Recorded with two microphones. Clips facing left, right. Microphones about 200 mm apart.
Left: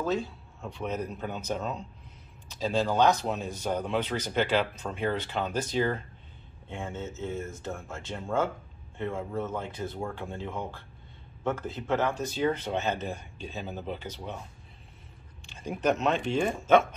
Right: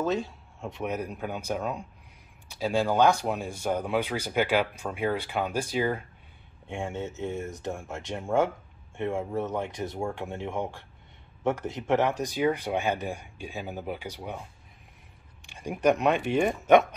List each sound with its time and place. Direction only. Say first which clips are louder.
0.0 s speech: right 1 dB; 20° right (ahead or behind)
11.7 s speech: right 3 dB; 20° right (ahead or behind)
15.4 s speech: right 3 dB; 15° right (ahead or behind)